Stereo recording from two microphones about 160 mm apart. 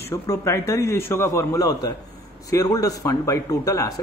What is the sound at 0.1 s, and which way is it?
Speech, 20° left (ahead or behind).